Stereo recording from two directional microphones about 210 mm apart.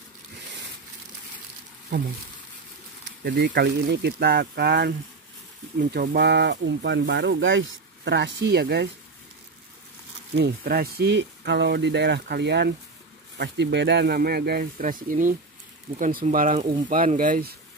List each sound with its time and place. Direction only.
3.1 s speech: 50° right (ahead or behind)
10.3 s speech: 50° right (ahead or behind)